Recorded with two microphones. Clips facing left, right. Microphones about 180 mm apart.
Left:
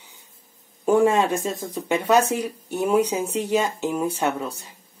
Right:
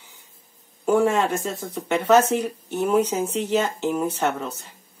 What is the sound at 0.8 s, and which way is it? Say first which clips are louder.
Speech: left 1 dB; 20° left (ahead or behind).